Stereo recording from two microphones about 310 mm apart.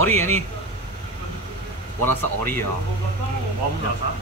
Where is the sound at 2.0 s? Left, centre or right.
Centre.